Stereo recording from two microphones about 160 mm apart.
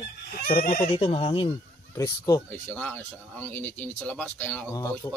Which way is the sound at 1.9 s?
20° left (ahead or behind).